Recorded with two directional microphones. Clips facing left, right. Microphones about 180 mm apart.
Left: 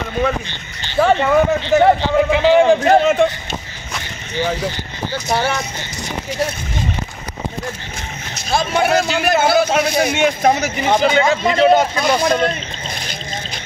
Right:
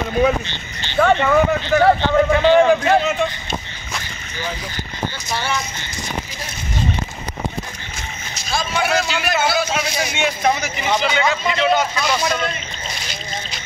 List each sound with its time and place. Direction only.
0.9 s speech: 10° left (ahead or behind)
1.6 s a man's voice: 25° left (ahead or behind)
2.0 s speech: 5° left (ahead or behind)
2.8 s speech: 45° left (ahead or behind)
5.3 s speech: 60° left (ahead or behind)
8.5 s speech: 55° left (ahead or behind)